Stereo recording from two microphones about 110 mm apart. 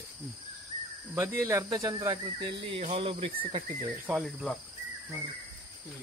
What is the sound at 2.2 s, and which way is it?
Speech, 55° right (ahead or behind).